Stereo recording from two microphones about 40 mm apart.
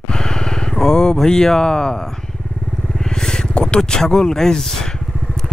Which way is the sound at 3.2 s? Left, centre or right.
Centre.